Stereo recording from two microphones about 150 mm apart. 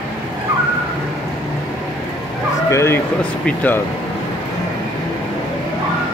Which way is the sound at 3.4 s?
10° left (ahead or behind).